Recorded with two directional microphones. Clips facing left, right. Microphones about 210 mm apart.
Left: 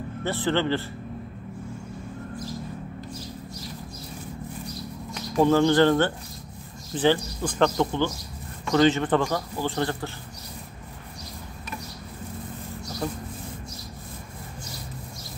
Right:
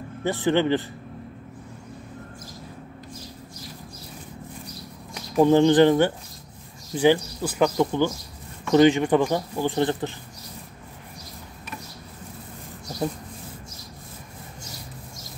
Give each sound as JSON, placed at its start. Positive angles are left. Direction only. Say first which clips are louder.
{"t": 0.2, "sound": "speech", "louder": "right 3 dB", "side_deg": -15}
{"t": 5.4, "sound": "speech", "louder": "right 3 dB", "side_deg": -20}